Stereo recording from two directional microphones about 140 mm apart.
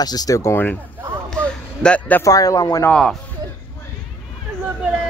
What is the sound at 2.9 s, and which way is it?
Speech, 5° left (ahead or behind).